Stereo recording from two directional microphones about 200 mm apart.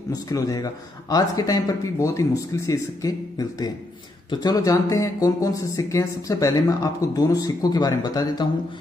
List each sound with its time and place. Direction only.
0.1 s speech: 15° left (ahead or behind)